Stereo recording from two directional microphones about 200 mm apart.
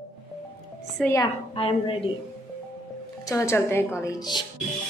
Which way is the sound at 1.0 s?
15° left (ahead or behind).